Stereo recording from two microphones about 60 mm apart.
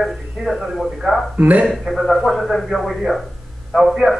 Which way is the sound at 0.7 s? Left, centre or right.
Centre.